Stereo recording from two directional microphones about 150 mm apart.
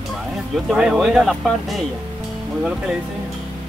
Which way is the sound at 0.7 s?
5° right (ahead or behind).